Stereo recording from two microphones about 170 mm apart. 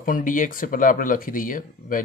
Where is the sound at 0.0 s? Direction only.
50° left (ahead or behind).